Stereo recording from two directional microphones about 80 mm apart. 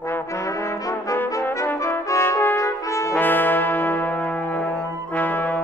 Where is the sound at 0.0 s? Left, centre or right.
Left.